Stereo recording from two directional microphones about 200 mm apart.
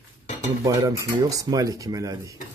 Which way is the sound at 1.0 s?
15° right (ahead or behind).